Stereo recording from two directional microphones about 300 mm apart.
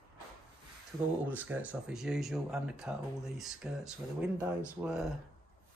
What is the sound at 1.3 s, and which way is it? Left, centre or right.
Speech, centre.